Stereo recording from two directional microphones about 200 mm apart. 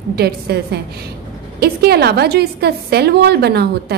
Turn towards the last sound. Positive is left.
turn(degrees=-55)  # may be behind; listen again after turning